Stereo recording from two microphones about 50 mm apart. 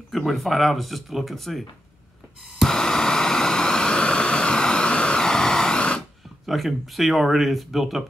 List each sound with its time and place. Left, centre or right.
0.1 s speech: centre
2.6 s a sound: centre
6.4 s speech: centre